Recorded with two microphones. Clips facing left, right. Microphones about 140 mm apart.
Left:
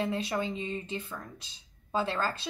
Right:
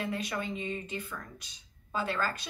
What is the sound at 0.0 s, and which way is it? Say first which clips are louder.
A woman's voice: left 4 dB; 25° left (ahead or behind).